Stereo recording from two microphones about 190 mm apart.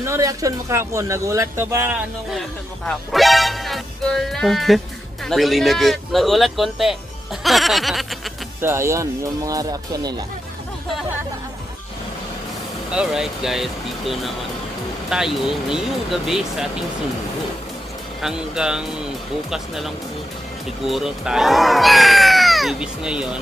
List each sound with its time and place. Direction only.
0.0 s speech: 15° right (ahead or behind)
2.8 s speech: centre (ahead or behind)
8.5 s speech: 15° right (ahead or behind)
12.9 s speech: 5° right (ahead or behind)
18.2 s speech: 5° right (ahead or behind)